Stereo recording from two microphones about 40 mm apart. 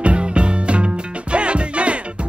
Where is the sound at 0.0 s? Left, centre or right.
Right.